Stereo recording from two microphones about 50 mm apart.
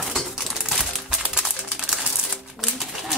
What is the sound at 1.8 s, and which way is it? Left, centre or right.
Bird, centre.